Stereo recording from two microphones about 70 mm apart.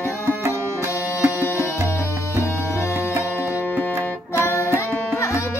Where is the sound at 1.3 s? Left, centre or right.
Left.